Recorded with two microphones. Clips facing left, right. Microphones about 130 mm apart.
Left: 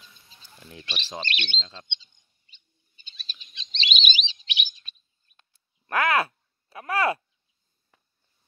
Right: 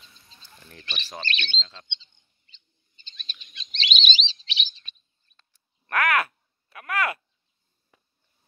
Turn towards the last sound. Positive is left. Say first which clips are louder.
# left 3 dB
turn(degrees=30)  # may be behind; listen again after turning